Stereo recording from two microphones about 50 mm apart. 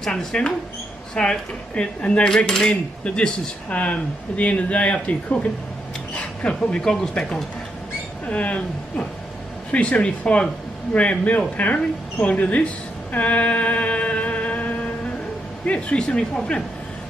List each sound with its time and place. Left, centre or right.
0.0 s speech: centre
2.3 s speech: centre
6.8 s speech: centre
8.3 s speech: left
13.1 s music: left
15.6 s speech: left